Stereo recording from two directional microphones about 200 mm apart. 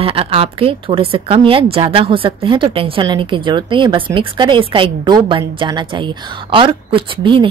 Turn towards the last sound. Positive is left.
turn(degrees=-25)  # may be behind; listen again after turning